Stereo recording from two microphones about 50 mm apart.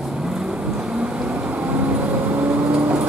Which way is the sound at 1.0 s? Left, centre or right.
Right.